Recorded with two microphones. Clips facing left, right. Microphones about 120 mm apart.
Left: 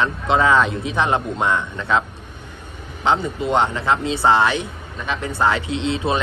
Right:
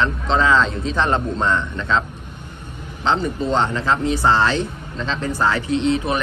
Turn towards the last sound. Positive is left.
turn(degrees=20)  # may be behind; listen again after turning